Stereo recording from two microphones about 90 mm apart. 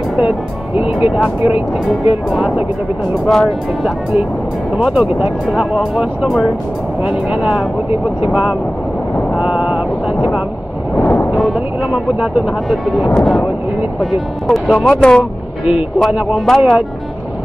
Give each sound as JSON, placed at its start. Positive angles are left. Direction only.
{"t": 0.7, "sound": "speech", "side_deg": -15}
{"t": 3.3, "sound": "speech", "side_deg": 0}
{"t": 4.7, "sound": "speech", "side_deg": -10}
{"t": 9.4, "sound": "a sound", "side_deg": -10}
{"t": 11.0, "sound": "a sound", "side_deg": 25}
{"t": 11.3, "sound": "a sound", "side_deg": 0}
{"t": 12.2, "sound": "speech", "side_deg": 0}
{"t": 16.0, "sound": "speech", "side_deg": -5}
{"t": 16.4, "sound": "speech", "side_deg": 5}